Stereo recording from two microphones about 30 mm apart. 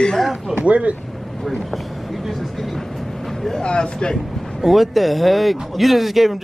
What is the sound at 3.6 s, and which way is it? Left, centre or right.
Speech, left.